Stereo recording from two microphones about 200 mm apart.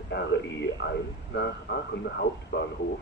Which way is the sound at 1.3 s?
55° left (ahead or behind).